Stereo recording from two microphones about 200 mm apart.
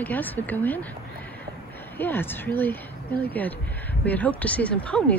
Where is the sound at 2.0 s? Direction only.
10° left (ahead or behind).